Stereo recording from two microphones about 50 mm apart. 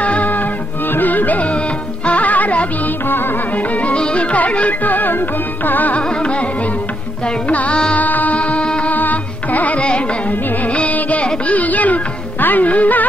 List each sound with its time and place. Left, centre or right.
0.0 s music: left
6.0 s music: left
7.4 s music: left
8.0 s music: left
8.9 s carnatic music: left
10.6 s music: left